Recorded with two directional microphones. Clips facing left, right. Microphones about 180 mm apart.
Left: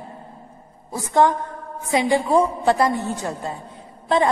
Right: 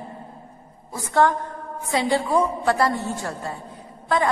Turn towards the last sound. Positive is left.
turn(degrees=25)  # may be behind; listen again after turning